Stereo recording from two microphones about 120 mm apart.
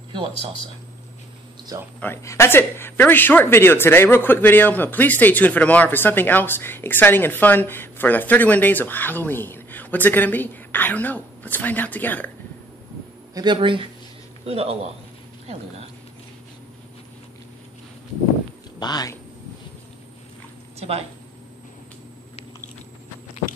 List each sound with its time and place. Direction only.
1.7 s speech: 30° right (ahead or behind)
2.2 s speech: 20° left (ahead or behind)
13.3 s speech: 35° right (ahead or behind)
14.4 s a man's voice: 55° right (ahead or behind)
18.8 s speech: 35° left (ahead or behind)